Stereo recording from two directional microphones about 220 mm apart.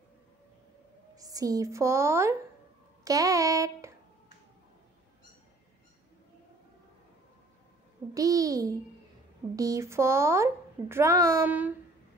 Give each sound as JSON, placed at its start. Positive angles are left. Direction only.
{"t": 1.1, "sound": "a woman's voice", "side_deg": -15}
{"t": 8.1, "sound": "a woman's voice", "side_deg": -15}